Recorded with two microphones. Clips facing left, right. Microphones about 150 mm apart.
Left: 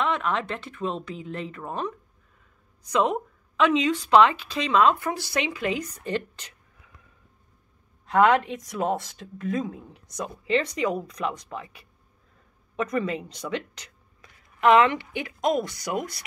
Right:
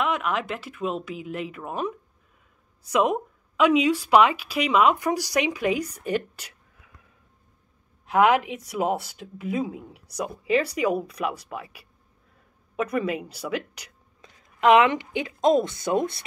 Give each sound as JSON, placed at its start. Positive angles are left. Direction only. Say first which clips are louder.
{"t": 0.0, "sound": "a woman's voice", "louder": "even", "side_deg": -5}
{"t": 8.1, "sound": "a woman's voice", "louder": "even", "side_deg": -5}